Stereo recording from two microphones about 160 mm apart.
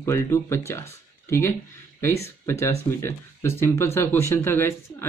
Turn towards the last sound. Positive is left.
turn(degrees=15)  # may be behind; listen again after turning